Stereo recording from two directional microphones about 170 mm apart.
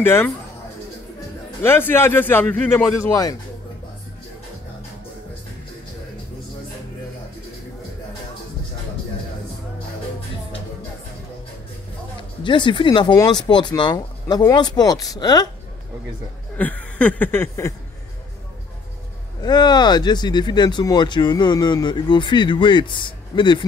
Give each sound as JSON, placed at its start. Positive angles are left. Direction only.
{"t": 0.0, "sound": "a man's voice", "side_deg": 15}
{"t": 1.6, "sound": "a man's voice", "side_deg": 15}
{"t": 12.4, "sound": "speech", "side_deg": 30}
{"t": 16.5, "sound": "a man's voice", "side_deg": 10}
{"t": 19.4, "sound": "speech", "side_deg": 25}